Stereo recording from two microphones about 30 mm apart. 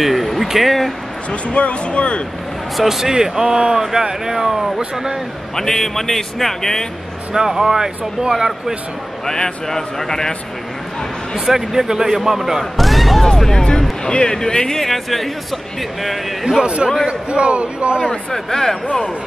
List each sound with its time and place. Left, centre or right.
0.0 s a sound: centre
0.5 s speech: centre
1.3 s speech: left
2.8 s speech: centre
3.1 s speech: right
5.6 s speech: centre
7.3 s speech: centre
9.2 s speech: centre
11.3 s speech: centre
13.4 s speech: centre
14.0 s speech: left
14.9 s speech: centre
16.6 s a man's voice: right
18.3 s speech: centre